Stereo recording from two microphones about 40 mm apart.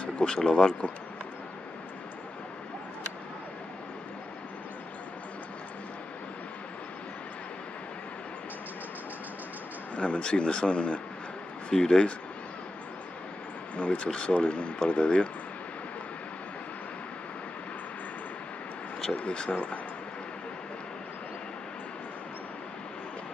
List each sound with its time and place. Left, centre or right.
0.0 s a sound: left
0.4 s speech: centre
9.9 s speech: left
13.7 s speech: left
19.1 s speech: left
19.5 s speech: left